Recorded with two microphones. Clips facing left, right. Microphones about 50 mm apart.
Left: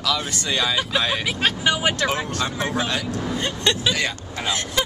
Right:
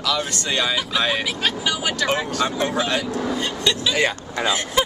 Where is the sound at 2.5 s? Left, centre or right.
Centre.